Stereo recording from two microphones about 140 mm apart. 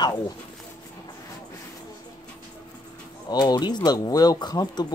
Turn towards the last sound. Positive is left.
turn(degrees=30)  # may be behind; listen again after turning